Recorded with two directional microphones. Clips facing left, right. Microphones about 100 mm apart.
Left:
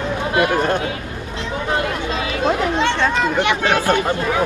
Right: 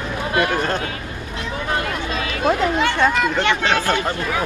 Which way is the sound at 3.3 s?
15° left (ahead or behind).